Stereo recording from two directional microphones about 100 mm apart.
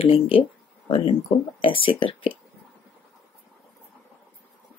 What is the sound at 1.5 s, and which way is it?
Speech, 65° left (ahead or behind).